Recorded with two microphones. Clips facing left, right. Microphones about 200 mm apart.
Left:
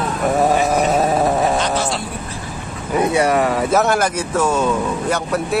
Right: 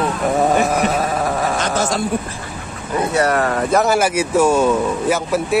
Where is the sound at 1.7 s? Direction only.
45° right (ahead or behind).